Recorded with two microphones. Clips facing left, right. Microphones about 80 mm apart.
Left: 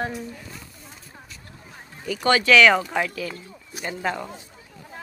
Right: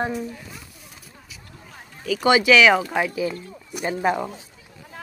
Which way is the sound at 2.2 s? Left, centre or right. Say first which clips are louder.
Right 1 dB; centre.